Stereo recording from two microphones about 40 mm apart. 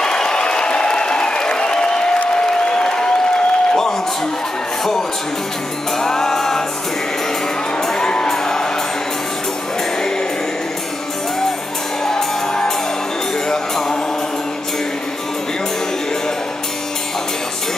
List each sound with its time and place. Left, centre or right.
0.0 s applause: centre
5.9 s music: centre
7.8 s music: centre
12.1 s music: centre
13.5 s mantra: centre